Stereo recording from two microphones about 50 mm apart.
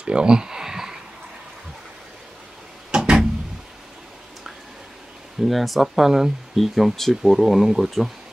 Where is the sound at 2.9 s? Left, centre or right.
Centre.